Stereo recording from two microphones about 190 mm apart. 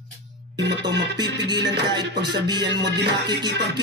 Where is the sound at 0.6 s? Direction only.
65° right (ahead or behind).